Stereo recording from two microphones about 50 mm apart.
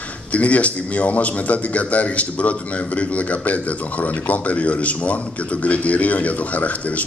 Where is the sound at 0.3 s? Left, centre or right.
Left.